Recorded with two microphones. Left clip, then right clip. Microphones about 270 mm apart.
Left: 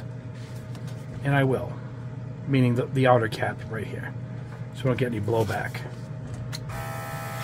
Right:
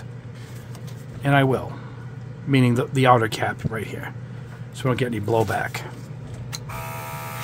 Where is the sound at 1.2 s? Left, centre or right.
Right.